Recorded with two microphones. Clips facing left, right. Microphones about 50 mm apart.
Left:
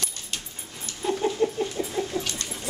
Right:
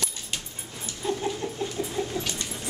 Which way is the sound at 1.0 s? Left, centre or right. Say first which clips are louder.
Left 5 dB; centre.